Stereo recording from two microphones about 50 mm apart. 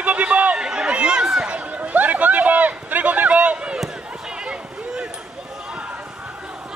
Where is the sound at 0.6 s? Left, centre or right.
Centre.